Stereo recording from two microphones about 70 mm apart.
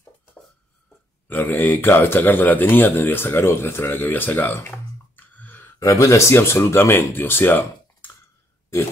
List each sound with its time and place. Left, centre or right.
1.3 s speech: left
4.6 s a sound: left
5.8 s speech: left